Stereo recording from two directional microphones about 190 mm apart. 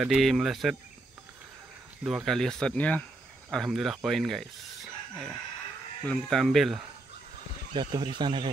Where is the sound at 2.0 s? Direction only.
Centre (ahead or behind).